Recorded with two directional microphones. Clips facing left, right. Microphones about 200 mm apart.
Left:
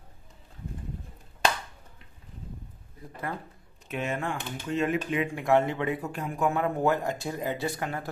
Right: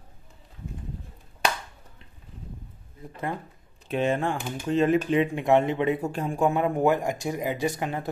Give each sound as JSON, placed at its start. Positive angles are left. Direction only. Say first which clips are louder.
{"t": 3.9, "sound": "speech", "louder": "right 6 dB", "side_deg": -30}